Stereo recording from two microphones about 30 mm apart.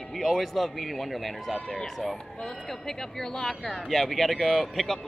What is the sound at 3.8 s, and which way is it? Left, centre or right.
Speech, centre.